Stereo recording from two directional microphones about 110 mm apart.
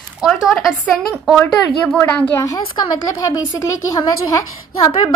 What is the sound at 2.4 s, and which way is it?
A woman's voice, 30° left (ahead or behind).